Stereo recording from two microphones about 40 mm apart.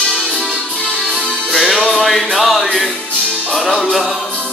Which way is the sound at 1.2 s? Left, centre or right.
Centre.